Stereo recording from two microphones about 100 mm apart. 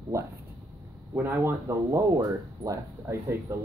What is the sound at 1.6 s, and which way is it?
Speech, 30° right (ahead or behind).